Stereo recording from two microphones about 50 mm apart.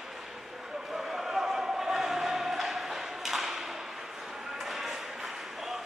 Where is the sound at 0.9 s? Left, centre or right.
Centre.